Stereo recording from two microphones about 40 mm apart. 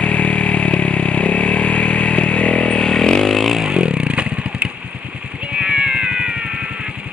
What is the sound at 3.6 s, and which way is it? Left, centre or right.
Vehicle, right.